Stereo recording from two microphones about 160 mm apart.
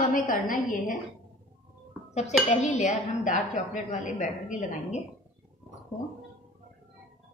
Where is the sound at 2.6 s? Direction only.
50° left (ahead or behind).